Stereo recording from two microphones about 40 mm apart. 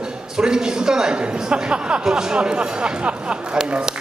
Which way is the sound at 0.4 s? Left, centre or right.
Centre.